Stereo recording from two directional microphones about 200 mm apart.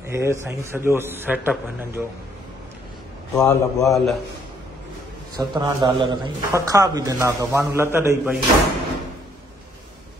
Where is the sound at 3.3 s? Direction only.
15° left (ahead or behind).